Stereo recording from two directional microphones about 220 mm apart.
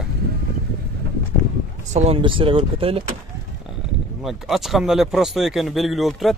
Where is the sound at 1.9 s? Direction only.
30° right (ahead or behind).